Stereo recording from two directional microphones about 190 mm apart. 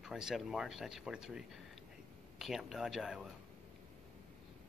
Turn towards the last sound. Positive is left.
turn(degrees=-5)  # may be behind; listen again after turning